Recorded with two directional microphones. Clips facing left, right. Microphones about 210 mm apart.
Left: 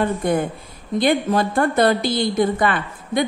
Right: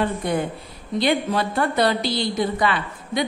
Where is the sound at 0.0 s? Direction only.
50° left (ahead or behind).